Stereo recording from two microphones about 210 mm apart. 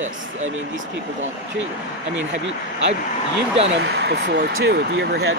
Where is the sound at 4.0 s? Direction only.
50° right (ahead or behind).